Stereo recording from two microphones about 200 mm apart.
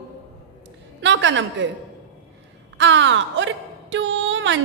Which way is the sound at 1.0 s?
65° right (ahead or behind).